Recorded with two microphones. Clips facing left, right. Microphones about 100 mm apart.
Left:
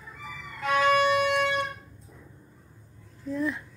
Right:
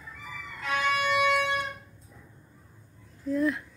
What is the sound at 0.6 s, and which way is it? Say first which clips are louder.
Violin: left 6 dB; 40° left (ahead or behind).